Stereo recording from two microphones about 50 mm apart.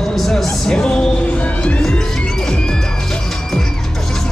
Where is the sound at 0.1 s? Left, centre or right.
Centre.